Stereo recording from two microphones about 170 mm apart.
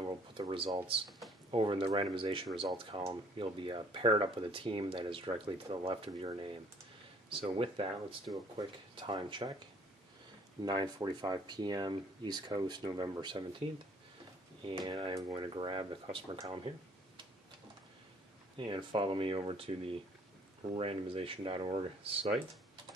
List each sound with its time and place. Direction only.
0.0 s a sound: 30° right (ahead or behind)
1.5 s speech: 30° right (ahead or behind)
10.6 s speech: 25° right (ahead or behind)
14.6 s speech: 30° right (ahead or behind)
18.6 s speech: 30° right (ahead or behind)